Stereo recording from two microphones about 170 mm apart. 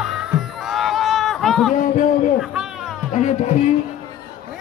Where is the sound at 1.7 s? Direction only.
50° left (ahead or behind).